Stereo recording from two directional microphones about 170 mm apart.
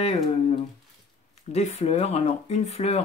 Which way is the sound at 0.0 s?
35° left (ahead or behind).